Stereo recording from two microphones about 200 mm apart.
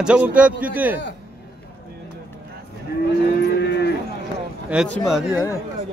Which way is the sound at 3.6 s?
55° left (ahead or behind).